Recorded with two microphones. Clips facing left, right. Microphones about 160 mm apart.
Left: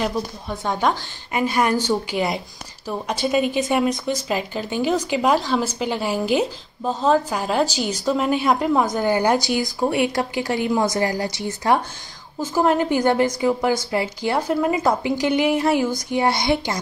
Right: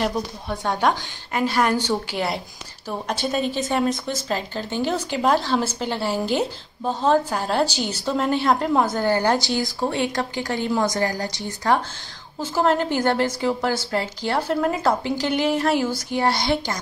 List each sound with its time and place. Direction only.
0.5 s a woman's voice: 5° right (ahead or behind)
1.3 s a woman's voice: 10° left (ahead or behind)
6.8 s a woman's voice: 5° right (ahead or behind); by 11.8 s 20° left (ahead or behind)
12.5 s a woman's voice: 10° left (ahead or behind)